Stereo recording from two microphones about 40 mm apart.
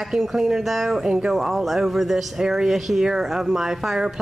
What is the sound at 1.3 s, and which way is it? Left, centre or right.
A woman's voice, centre.